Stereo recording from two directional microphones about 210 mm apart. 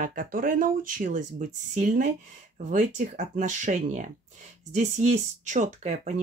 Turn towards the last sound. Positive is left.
turn(degrees=-35)  # may be behind; listen again after turning